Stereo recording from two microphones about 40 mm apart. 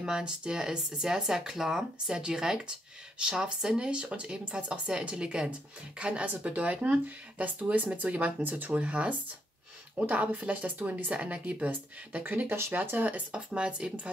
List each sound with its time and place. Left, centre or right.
0.0 s speech: right
8.4 s speech: right
8.7 s speech: right
11.1 s speech: right
12.9 s speech: right
13.3 s speech: right